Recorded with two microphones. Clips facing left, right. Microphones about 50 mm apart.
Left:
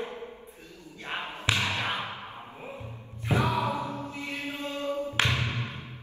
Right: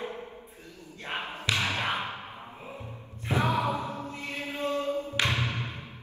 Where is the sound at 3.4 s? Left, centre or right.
Right.